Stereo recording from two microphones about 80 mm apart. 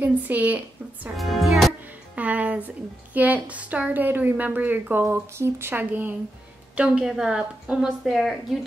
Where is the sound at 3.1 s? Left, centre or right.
Centre.